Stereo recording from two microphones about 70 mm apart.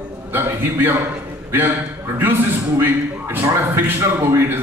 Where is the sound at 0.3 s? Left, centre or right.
Right.